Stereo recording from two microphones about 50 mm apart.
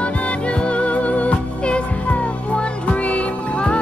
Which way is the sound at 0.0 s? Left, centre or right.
Left.